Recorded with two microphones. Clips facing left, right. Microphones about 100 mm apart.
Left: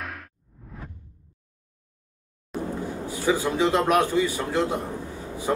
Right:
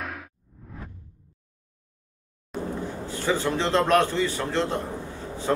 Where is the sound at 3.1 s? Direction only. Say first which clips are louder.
Left 1 dB; 10° left (ahead or behind).